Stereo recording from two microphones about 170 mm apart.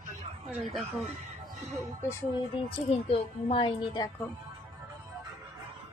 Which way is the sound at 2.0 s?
15° left (ahead or behind).